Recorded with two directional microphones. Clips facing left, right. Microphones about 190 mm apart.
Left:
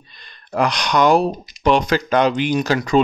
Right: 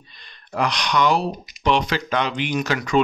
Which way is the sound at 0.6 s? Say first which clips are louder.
Left 4 dB; 45° left (ahead or behind).